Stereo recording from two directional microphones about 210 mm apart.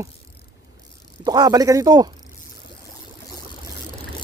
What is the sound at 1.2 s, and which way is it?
Speech, 20° right (ahead or behind).